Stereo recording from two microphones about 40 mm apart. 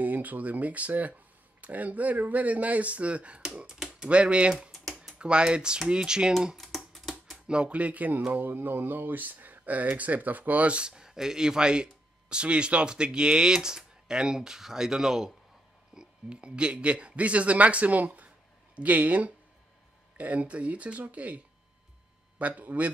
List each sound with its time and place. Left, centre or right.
0.0 s speech: right
3.6 s typing: centre
4.1 s speech: right
4.6 s typing: centre
5.2 s speech: right
6.5 s typing: centre
7.4 s speech: right
8.3 s speech: right
10.9 s speech: centre
15.9 s speech: right
22.6 s speech: right